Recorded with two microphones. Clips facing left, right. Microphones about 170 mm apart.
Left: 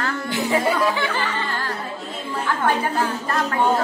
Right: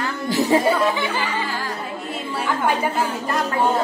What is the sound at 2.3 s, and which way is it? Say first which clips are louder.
A woman's voice: even; 10° right (ahead or behind).